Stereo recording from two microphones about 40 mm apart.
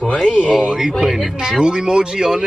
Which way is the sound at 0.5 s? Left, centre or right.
Centre.